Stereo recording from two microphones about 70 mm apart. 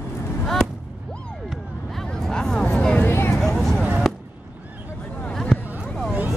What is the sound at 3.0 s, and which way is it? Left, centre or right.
Vehicle, left.